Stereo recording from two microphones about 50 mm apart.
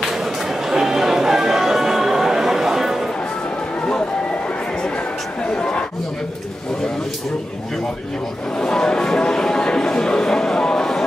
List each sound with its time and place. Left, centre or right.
0.0 s music: centre
5.5 s chatter: centre
8.5 s a sound: centre